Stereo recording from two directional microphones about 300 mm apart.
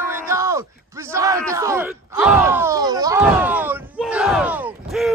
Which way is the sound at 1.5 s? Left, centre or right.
Centre.